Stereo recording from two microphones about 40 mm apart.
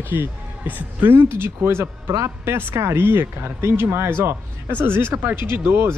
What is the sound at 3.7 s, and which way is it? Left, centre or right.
Speech, right.